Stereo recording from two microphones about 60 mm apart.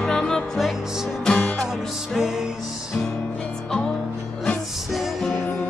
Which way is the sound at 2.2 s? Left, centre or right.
Centre.